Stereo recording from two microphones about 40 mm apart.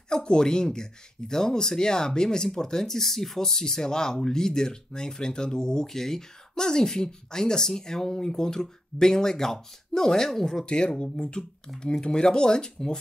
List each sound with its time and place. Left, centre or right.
0.1 s speech: centre
10.6 s speech: left